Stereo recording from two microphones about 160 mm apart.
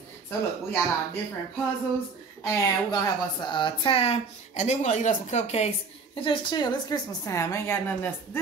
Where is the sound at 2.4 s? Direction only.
20° left (ahead or behind).